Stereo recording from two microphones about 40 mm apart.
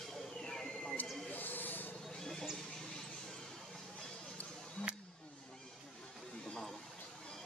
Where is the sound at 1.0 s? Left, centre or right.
Left.